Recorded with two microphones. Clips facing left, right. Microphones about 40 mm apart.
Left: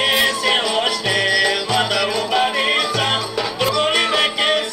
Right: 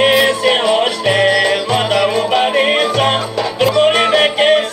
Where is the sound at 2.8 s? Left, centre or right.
Right.